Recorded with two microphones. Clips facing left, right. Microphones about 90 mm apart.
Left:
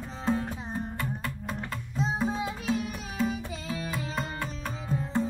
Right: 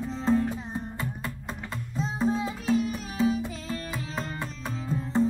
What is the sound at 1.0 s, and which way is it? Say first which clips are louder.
Music: even; 20° right (ahead or behind).